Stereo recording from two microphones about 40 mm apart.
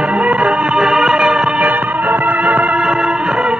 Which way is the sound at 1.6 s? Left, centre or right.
Right.